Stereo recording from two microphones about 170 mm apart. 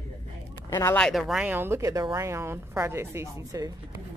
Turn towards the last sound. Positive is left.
turn(degrees=-20)  # may be behind; listen again after turning